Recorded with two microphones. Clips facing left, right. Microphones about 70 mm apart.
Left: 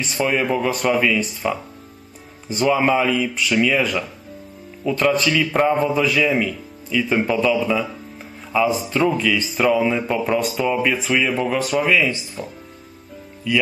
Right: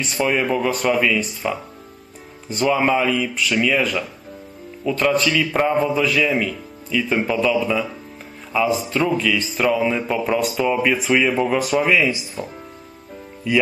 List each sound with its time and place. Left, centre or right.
0.0 s speech: centre
12.4 s speech: right